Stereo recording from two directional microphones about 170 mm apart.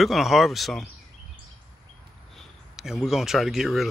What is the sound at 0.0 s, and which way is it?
Speech, centre (ahead or behind).